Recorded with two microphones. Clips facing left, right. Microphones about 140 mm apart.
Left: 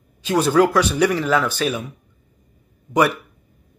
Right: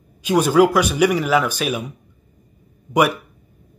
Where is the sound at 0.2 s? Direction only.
15° right (ahead or behind).